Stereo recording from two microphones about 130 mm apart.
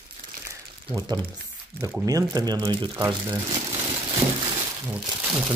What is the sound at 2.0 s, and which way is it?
Speech, 30° right (ahead or behind).